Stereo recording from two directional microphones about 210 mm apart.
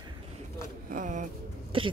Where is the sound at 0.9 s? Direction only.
35° right (ahead or behind).